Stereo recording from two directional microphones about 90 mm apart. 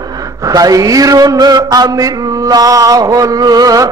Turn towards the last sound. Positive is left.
turn(degrees=-40)  # may be behind; listen again after turning